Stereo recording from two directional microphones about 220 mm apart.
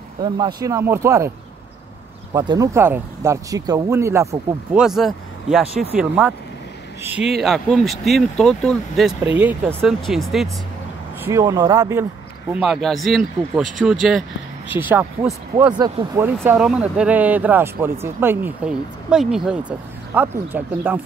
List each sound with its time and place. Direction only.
0.6 s speech: 15° right (ahead or behind)
2.3 s speech: 15° right (ahead or behind)
4.8 s speech: centre (ahead or behind)
11.2 s speech: 15° right (ahead or behind)
12.5 s speech: centre (ahead or behind)